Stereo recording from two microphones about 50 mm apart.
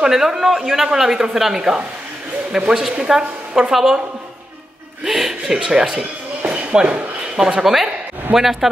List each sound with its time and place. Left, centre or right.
0.0 s a woman's voice: centre
5.0 s a woman's voice: centre
6.4 s a sound: right
7.3 s a woman's voice: centre